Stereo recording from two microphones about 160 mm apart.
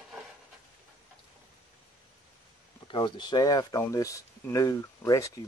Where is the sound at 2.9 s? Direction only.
30° left (ahead or behind).